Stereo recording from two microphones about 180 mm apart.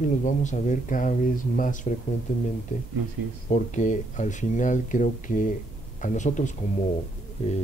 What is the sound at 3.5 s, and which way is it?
Speech, 45° left (ahead or behind).